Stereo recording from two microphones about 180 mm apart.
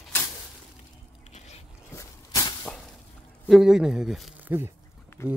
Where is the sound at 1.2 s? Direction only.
40° left (ahead or behind).